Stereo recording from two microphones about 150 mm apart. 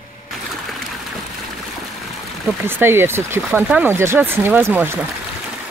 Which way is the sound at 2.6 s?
15° right (ahead or behind).